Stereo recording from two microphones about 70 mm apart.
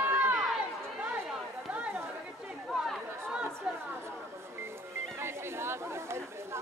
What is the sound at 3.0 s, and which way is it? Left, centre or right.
Chatter, right.